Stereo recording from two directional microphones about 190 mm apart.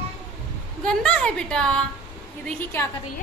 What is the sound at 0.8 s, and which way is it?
A woman's voice, 5° left (ahead or behind).